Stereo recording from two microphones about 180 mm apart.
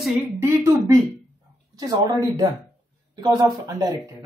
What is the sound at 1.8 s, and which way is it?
Speech, 20° right (ahead or behind).